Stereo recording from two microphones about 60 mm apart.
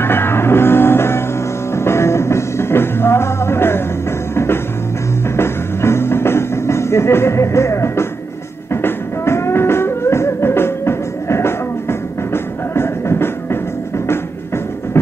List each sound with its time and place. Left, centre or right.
0.0 s music: left
5.3 s music: left